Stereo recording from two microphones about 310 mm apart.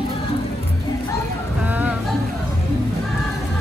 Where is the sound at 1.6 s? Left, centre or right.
Centre.